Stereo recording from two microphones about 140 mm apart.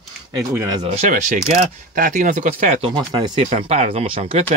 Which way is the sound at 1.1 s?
65° right (ahead or behind).